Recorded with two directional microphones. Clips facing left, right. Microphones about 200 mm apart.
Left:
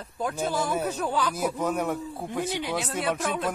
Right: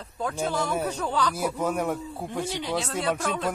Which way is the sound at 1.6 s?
10° right (ahead or behind).